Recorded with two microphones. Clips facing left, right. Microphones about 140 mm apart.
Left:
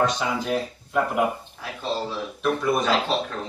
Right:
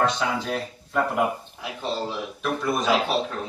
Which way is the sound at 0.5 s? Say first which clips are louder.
Left 3 dB; 5° left (ahead or behind).